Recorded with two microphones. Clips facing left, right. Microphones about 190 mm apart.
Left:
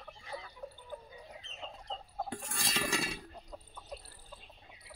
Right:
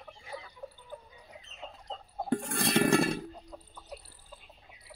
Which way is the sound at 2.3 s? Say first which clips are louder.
Right 12 dB; 60° right (ahead or behind).